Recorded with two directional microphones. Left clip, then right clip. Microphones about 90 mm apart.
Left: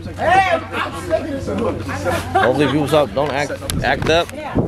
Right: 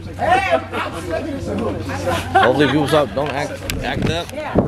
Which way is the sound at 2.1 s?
20° right (ahead or behind).